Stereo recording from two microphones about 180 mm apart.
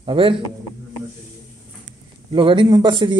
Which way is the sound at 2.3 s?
25° right (ahead or behind).